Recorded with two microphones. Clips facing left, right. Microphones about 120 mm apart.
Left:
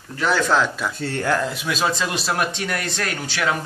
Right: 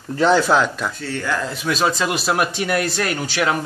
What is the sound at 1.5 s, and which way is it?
A man's voice, centre (ahead or behind).